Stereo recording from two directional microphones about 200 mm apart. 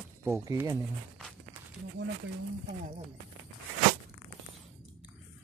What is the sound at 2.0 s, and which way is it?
Speech, 60° right (ahead or behind).